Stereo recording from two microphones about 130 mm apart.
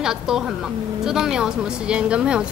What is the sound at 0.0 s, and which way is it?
A woman's voice, 5° right (ahead or behind).